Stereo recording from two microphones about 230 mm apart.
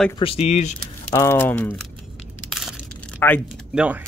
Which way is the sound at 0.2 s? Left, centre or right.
Left.